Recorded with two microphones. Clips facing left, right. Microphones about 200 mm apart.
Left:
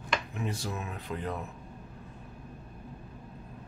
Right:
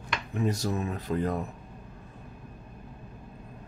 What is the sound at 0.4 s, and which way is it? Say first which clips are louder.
Speech: right 7 dB; 40° right (ahead or behind).